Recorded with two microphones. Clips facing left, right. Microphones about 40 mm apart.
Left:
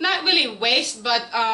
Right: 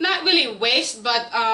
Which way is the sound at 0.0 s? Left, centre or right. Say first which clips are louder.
Right 1 dB; centre.